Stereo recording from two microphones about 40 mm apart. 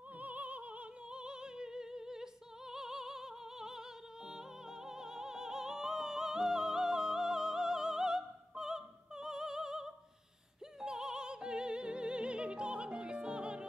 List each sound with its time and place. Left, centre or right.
0.2 s opera: right
1.2 s music: right